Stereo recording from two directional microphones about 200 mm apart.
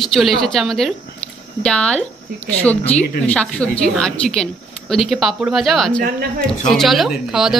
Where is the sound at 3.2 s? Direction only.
5° left (ahead or behind).